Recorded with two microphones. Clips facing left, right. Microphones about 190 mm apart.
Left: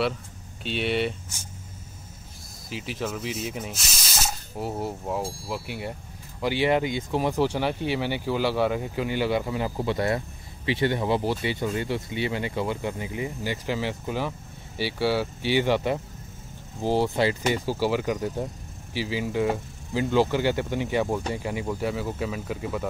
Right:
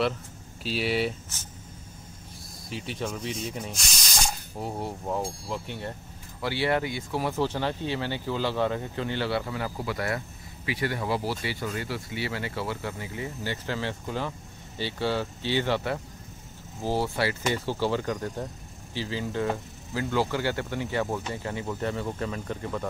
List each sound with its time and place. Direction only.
0.7 s speech: centre (ahead or behind)
2.7 s speech: centre (ahead or behind)